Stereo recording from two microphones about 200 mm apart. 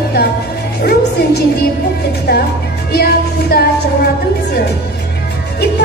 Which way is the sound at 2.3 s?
50° left (ahead or behind).